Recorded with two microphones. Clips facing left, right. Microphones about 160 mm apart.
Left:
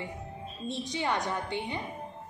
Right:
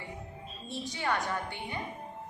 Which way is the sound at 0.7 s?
20° left (ahead or behind).